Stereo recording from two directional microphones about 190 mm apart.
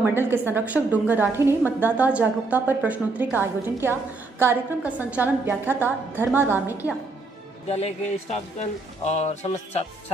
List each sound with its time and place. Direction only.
0.0 s a woman's voice: 10° right (ahead or behind)
7.6 s speech: 35° left (ahead or behind)